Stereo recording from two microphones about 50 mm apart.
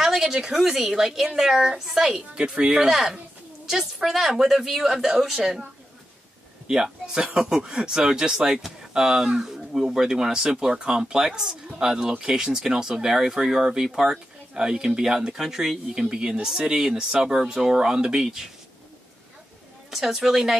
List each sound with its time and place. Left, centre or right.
0.0 s speech: centre
2.3 s speech: centre
3.6 s speech: centre
6.7 s speech: centre
19.9 s speech: centre